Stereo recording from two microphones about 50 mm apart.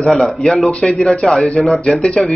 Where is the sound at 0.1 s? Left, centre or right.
Centre.